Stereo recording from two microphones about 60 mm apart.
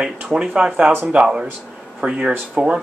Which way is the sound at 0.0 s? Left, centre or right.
Centre.